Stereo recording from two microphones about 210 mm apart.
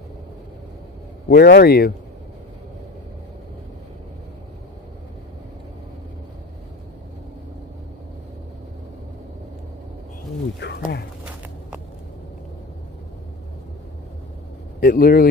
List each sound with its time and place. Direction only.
1.3 s a man's voice: 45° left (ahead or behind)
10.8 s a sound: 50° left (ahead or behind)
14.8 s a man's voice: 45° left (ahead or behind)